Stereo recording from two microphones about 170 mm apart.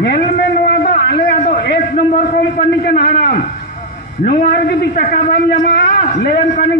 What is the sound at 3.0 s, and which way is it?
Speech, 60° left (ahead or behind).